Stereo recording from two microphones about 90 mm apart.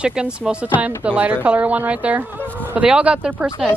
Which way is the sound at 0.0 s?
10° right (ahead or behind).